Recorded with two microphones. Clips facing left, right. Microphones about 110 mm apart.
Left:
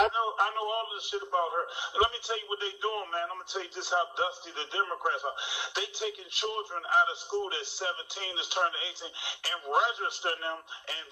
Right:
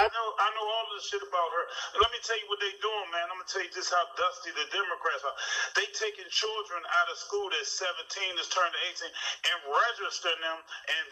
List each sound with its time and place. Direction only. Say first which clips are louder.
0.0 s a man's voice: even; 15° left (ahead or behind)
2.9 s speech: even; 50° right (ahead or behind)
3.5 s a man's voice: even; 15° left (ahead or behind)
10.3 s speech: even; 50° right (ahead or behind)